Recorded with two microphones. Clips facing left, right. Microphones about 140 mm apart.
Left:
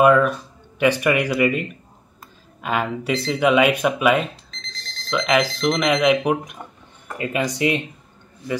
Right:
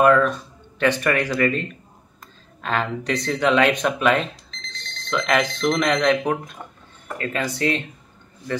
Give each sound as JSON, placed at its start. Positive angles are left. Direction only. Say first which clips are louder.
{"t": 0.0, "sound": "speech", "louder": "left 1 dB", "side_deg": 10}